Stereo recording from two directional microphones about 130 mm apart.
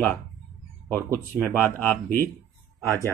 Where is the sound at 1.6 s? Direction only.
15° left (ahead or behind).